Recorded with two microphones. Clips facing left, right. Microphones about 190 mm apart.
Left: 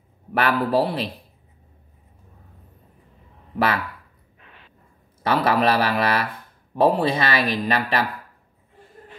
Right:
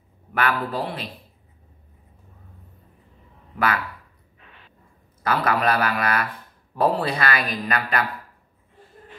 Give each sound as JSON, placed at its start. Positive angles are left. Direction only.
{"t": 0.3, "sound": "a man's voice", "side_deg": 35}
{"t": 3.5, "sound": "speech", "side_deg": 30}
{"t": 5.2, "sound": "speech", "side_deg": 30}